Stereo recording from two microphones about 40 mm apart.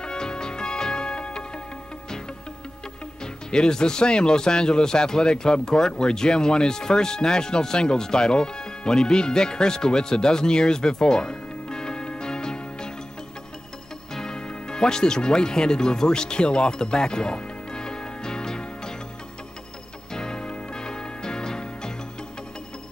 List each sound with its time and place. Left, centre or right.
0.0 s music: left
3.5 s speech: centre
14.1 s music: centre
20.1 s music: centre